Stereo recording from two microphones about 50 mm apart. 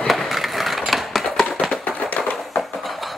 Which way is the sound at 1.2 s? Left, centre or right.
Centre.